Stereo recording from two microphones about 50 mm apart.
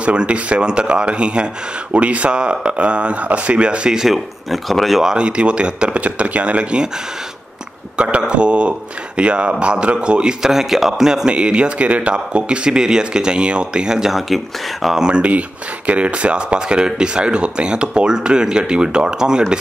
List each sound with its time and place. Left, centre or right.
0.0 s speech: right
4.0 s speech: centre
5.1 s speech: right
8.0 s speech: right
10.4 s a man's voice: centre
11.2 s speech: right
14.1 s speech: centre
15.0 s speech: centre